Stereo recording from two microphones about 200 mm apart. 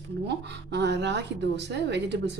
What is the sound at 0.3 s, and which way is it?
Speech, 60° right (ahead or behind).